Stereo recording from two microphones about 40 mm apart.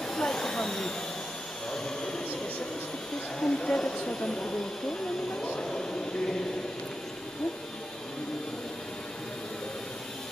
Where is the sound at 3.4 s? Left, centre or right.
Centre.